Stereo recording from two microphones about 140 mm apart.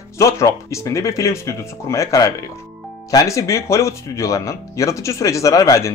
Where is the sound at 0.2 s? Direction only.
20° left (ahead or behind).